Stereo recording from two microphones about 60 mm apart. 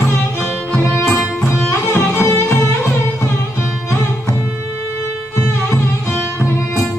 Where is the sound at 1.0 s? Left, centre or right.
Centre.